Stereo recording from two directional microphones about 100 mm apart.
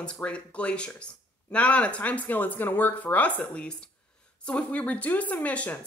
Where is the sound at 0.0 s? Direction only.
10° left (ahead or behind).